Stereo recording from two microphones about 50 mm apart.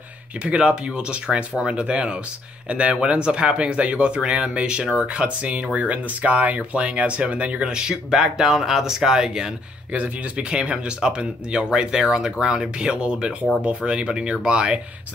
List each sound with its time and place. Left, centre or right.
0.4 s speech: centre